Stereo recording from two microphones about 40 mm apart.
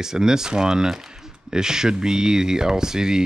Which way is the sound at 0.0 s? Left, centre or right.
Centre.